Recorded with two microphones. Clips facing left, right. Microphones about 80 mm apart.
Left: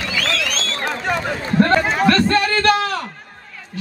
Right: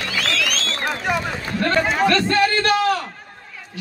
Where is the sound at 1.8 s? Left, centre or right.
Centre.